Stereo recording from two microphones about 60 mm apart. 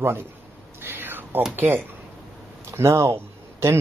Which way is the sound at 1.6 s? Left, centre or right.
Right.